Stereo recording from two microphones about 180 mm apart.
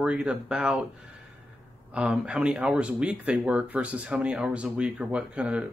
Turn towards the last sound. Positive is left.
turn(degrees=-5)  # may be behind; listen again after turning